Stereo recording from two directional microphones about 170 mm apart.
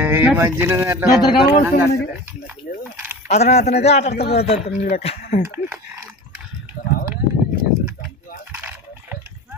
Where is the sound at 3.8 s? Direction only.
40° left (ahead or behind).